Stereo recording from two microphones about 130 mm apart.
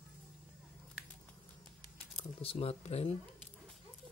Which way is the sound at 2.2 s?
50° left (ahead or behind).